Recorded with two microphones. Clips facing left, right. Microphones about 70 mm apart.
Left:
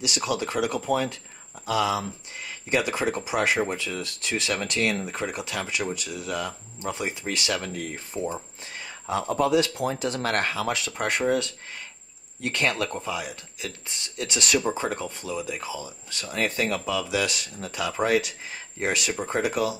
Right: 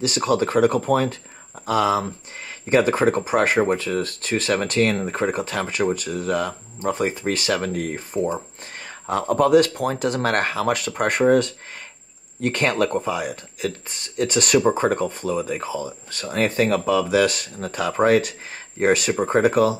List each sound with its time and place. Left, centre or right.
0.0 s speech: right
8.8 s a sound: right
9.3 s speech: right